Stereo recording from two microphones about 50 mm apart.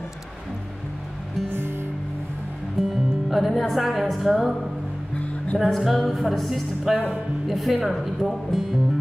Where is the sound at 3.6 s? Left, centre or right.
Centre.